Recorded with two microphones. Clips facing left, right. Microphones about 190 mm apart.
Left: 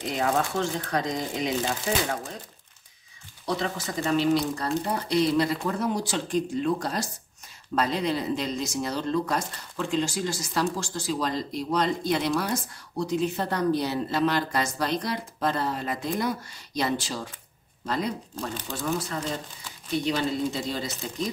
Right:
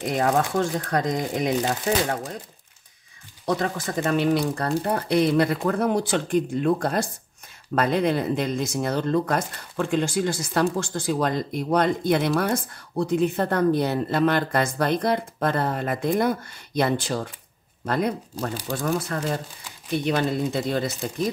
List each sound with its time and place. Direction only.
0.2 s speech: 45° right (ahead or behind)
3.4 s speech: 50° right (ahead or behind)